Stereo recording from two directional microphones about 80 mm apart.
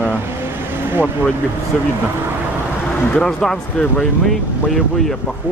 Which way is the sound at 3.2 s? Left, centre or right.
Centre.